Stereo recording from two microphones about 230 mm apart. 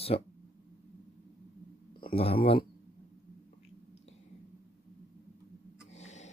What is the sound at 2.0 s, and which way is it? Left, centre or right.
Speech, left.